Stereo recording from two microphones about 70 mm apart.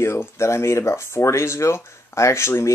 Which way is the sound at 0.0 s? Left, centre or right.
Left.